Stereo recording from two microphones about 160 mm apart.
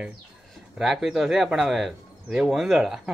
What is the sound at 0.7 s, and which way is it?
Speech, centre (ahead or behind).